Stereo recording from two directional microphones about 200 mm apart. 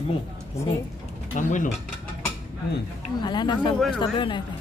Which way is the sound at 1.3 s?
40° left (ahead or behind).